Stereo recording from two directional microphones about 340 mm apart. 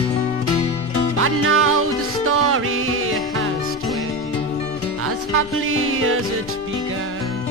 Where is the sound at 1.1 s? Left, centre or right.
Right.